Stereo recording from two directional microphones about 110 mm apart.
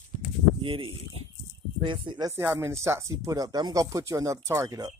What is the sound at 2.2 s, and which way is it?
Speech, 30° right (ahead or behind).